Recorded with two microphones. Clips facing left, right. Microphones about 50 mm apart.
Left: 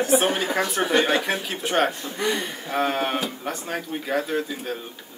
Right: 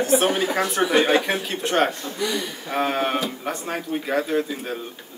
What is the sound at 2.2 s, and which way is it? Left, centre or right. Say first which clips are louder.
Speech: left 1 dB; left.